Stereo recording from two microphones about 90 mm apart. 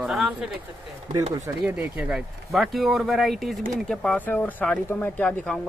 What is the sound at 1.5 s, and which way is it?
Speech, 25° right (ahead or behind).